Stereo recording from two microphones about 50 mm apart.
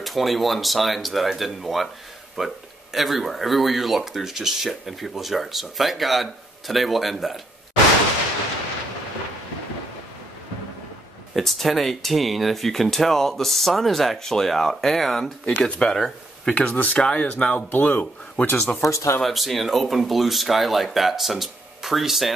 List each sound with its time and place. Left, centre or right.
0.0 s speech: centre
11.3 s speech: centre
16.7 s speech: left
17.0 s speech: centre
17.6 s speech: left
18.8 s speech: left
19.2 s speech: centre